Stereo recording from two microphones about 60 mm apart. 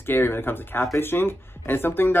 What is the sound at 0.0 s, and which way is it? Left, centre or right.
Speech, left.